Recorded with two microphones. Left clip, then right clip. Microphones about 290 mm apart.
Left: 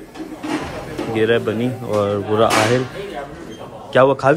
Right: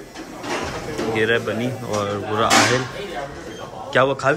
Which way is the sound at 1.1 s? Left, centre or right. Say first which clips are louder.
Left 3 dB; centre.